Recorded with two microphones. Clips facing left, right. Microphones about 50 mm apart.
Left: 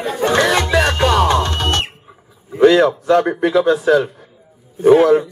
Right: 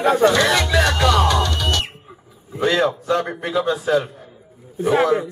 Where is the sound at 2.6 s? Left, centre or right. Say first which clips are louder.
Left 8 dB; left.